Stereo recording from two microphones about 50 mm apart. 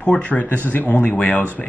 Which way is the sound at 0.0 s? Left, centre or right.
Left.